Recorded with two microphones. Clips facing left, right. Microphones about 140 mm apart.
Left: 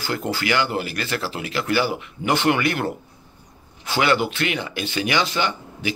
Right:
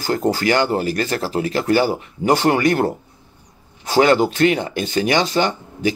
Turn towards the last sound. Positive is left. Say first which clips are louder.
# right 6 dB
turn(degrees=-40)  # may be behind; listen again after turning